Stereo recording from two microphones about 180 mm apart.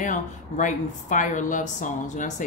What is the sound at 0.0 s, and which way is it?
Speech, 45° left (ahead or behind).